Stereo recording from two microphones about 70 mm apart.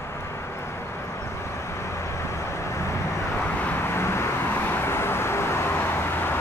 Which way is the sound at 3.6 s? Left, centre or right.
Left.